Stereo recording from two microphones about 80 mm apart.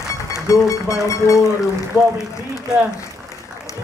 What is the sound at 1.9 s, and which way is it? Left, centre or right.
Speech, right.